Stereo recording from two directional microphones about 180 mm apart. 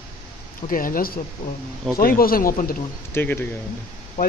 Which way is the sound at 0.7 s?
50° left (ahead or behind).